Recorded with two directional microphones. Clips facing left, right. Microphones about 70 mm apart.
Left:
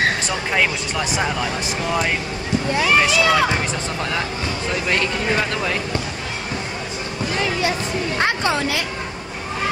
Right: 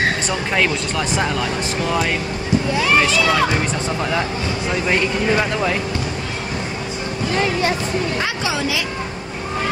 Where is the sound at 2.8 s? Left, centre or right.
Centre.